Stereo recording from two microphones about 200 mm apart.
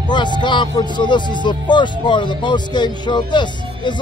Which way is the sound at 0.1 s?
20° left (ahead or behind).